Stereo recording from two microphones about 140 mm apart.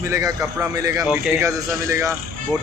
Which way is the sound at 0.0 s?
20° right (ahead or behind).